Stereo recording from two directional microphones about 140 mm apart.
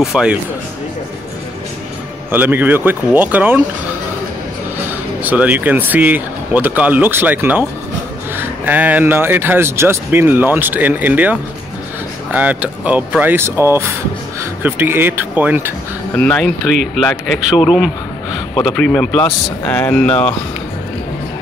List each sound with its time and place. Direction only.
0.0 s speech: 5° right (ahead or behind)
2.3 s speech: 15° right (ahead or behind)
4.8 s speech: 10° right (ahead or behind)
16.2 s speech: 5° left (ahead or behind)
16.9 s speech: 5° right (ahead or behind)
18.5 s a man's voice: 35° left (ahead or behind)
18.8 s speech: 5° left (ahead or behind)